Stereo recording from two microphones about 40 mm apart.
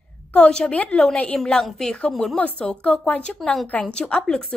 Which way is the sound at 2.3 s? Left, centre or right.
Left.